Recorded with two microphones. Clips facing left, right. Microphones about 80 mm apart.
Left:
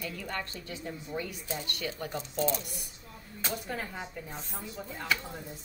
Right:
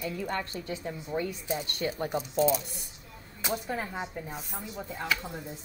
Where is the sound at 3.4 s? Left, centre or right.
Centre.